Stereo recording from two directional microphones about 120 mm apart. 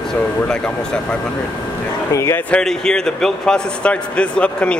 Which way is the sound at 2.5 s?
5° left (ahead or behind).